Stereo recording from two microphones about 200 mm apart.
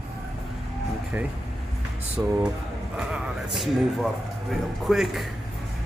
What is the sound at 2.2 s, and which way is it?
A man's voice, 10° right (ahead or behind).